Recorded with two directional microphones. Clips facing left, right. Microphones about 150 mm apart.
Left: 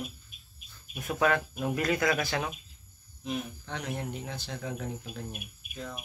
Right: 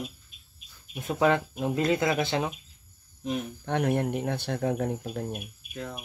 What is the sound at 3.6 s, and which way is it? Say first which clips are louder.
Speech: right 15 dB; 55° right (ahead or behind).